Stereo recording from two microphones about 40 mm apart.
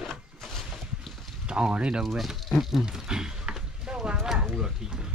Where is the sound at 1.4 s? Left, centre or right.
Right.